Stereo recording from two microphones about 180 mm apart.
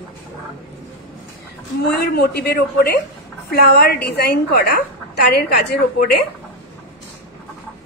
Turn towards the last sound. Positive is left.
turn(degrees=60)  # may be behind; listen again after turning